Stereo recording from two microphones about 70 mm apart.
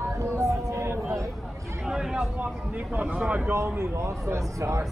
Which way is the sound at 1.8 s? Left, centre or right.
Centre.